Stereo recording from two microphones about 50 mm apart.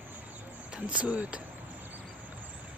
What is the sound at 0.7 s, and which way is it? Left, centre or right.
Speech, right.